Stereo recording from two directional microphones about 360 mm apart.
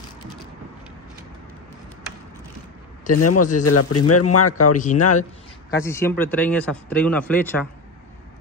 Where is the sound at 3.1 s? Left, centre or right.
Left.